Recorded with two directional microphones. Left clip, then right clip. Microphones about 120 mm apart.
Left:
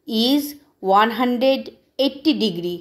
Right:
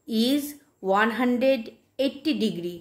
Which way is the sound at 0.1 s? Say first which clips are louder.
Left 6 dB; 15° left (ahead or behind).